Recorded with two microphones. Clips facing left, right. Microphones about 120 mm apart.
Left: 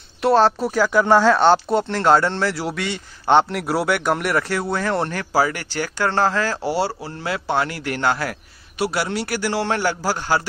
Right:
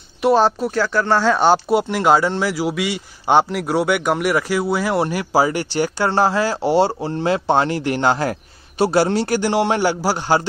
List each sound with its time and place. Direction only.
0.2 s speech: centre (ahead or behind)
1.3 s speech: 5° right (ahead or behind)